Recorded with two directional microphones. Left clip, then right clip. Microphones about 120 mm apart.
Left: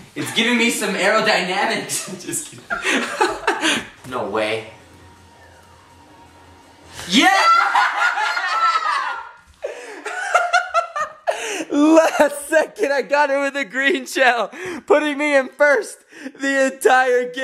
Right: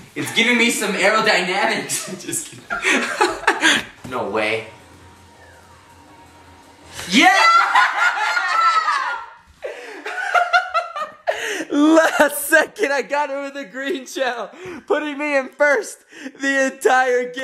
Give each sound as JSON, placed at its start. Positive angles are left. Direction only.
{"t": 0.1, "sound": "speech", "side_deg": -5}
{"t": 4.1, "sound": "speech", "side_deg": 0}
{"t": 6.9, "sound": "snicker", "side_deg": 0}
{"t": 9.6, "sound": "laughter", "side_deg": 20}
{"t": 12.4, "sound": "speech", "side_deg": -10}
{"t": 13.2, "sound": "speech", "side_deg": 40}
{"t": 15.0, "sound": "a man's voice", "side_deg": 15}
{"t": 15.5, "sound": "speech", "side_deg": 0}